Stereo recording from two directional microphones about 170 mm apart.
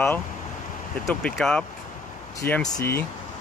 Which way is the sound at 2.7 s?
15° left (ahead or behind).